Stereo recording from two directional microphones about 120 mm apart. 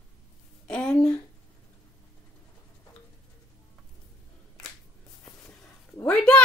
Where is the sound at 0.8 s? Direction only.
30° left (ahead or behind).